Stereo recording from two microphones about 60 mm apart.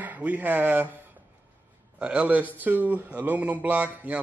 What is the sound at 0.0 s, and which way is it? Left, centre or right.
Speech, right.